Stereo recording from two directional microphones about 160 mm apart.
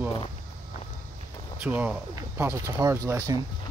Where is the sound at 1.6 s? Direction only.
10° right (ahead or behind).